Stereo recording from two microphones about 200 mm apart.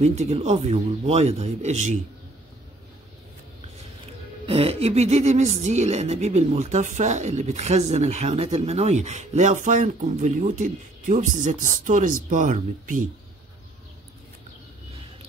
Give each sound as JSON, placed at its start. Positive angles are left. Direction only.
{"t": 0.0, "sound": "speech", "side_deg": -35}
{"t": 4.5, "sound": "speech", "side_deg": -30}